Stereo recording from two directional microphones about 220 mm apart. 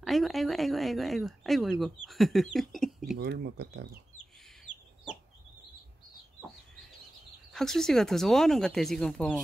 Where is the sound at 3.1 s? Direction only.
50° right (ahead or behind).